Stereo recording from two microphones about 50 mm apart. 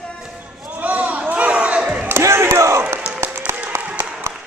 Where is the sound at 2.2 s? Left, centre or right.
Right.